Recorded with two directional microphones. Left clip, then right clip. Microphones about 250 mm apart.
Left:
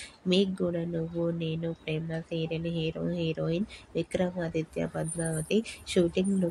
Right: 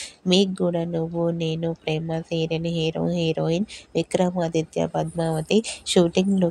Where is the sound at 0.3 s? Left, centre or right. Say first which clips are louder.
Right 7 dB; right.